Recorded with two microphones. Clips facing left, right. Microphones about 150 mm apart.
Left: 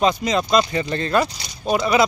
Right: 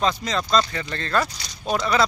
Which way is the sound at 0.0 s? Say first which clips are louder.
Left 5 dB; 15° left (ahead or behind).